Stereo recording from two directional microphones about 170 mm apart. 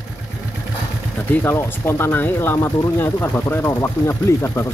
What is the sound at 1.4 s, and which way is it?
Speech, 15° left (ahead or behind).